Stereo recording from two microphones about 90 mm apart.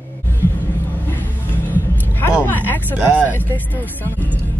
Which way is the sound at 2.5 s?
20° left (ahead or behind).